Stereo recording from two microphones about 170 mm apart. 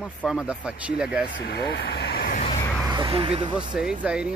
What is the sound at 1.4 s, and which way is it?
Speech, 70° left (ahead or behind).